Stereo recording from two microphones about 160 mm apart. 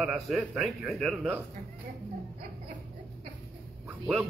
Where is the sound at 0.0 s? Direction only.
5° right (ahead or behind).